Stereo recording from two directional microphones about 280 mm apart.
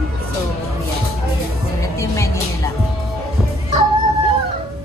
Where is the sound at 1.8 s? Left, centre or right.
Centre.